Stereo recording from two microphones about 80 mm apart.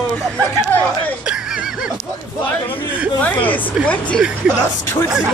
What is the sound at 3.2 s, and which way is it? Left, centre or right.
Speech, left.